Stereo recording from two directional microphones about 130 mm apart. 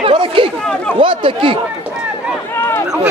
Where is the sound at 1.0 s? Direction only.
40° right (ahead or behind).